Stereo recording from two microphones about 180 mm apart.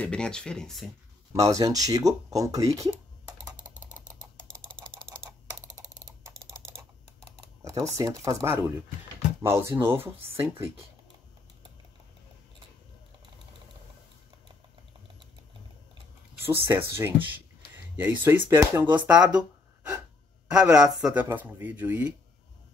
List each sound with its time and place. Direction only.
0.0 s speech: 5° left (ahead or behind)
1.3 s speech: 15° right (ahead or behind)
4.8 s typing: 5° left (ahead or behind)
7.2 s typing: 20° right (ahead or behind)
9.4 s speech: 15° right (ahead or behind)
16.4 s speech: 15° right (ahead or behind)